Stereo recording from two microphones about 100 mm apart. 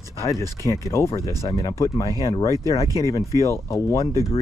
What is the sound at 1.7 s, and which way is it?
Speech, 35° left (ahead or behind).